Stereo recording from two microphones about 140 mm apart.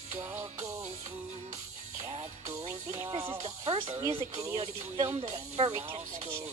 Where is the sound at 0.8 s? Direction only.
55° right (ahead or behind).